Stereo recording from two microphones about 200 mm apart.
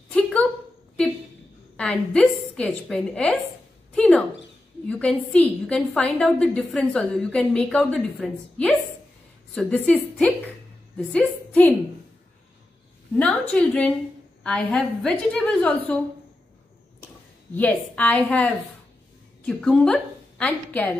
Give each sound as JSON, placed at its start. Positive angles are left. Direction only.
{"t": 0.1, "sound": "a sound", "side_deg": 5}
{"t": 1.8, "sound": "a woman's voice", "side_deg": 5}
{"t": 3.9, "sound": "a sound", "side_deg": 5}
{"t": 4.8, "sound": "a woman's voice", "side_deg": 5}
{"t": 13.2, "sound": "a woman's voice", "side_deg": 5}
{"t": 17.6, "sound": "a woman's voice", "side_deg": 5}